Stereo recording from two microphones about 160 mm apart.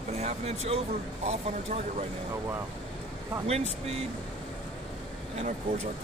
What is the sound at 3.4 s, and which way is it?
Speech, 40° right (ahead or behind).